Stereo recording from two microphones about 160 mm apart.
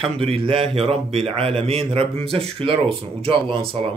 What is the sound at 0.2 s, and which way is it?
A man's voice, 35° right (ahead or behind).